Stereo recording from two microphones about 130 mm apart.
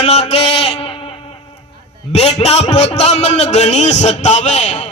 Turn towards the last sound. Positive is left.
turn(degrees=60)  # may be behind; listen again after turning